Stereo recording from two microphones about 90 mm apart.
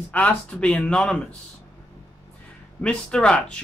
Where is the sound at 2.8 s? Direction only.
10° left (ahead or behind).